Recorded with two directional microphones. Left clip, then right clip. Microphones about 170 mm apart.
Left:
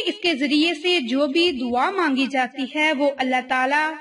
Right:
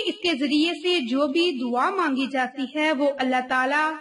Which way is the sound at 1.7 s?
30° left (ahead or behind).